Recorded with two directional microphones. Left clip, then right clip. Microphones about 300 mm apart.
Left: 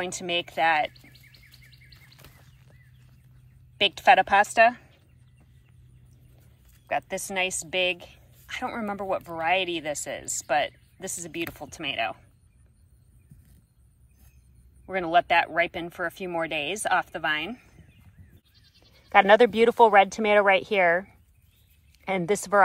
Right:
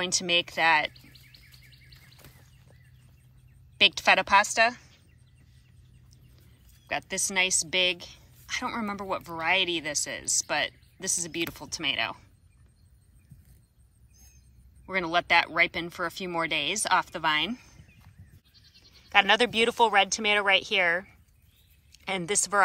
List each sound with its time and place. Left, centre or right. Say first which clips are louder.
0.0 s a woman's voice: right 3 dB; centre
3.7 s a woman's voice: left 2 dB; centre
6.9 s a woman's voice: left 2 dB; centre
14.9 s a woman's voice: left 3 dB; centre
18.5 s goat: right 4 dB; right
18.9 s a woman's voice: left 5 dB; centre